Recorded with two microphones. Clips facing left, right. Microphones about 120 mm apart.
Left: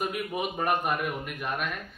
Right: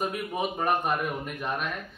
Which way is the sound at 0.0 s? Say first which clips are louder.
Right 1 dB; 35° right (ahead or behind).